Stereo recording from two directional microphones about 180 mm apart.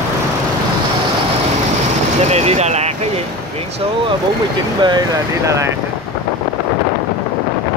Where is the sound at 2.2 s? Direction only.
35° right (ahead or behind).